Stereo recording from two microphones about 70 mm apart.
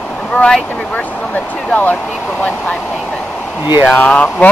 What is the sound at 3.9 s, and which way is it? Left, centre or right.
Speech, left.